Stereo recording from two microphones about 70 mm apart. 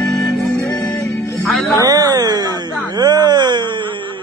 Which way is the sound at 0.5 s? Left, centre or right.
Left.